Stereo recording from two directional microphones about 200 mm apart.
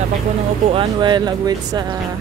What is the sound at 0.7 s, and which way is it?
Speech, 25° right (ahead or behind).